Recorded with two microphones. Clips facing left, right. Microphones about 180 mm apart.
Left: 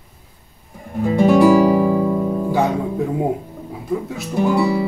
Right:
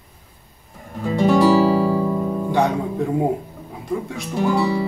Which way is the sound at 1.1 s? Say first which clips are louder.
Left 3 dB; 10° left (ahead or behind).